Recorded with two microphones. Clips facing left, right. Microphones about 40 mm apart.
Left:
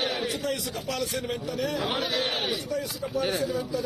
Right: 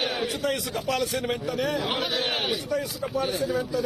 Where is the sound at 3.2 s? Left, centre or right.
Left.